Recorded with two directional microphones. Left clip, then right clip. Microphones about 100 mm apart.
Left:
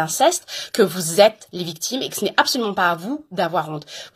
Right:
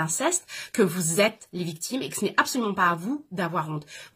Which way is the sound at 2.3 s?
30° right (ahead or behind).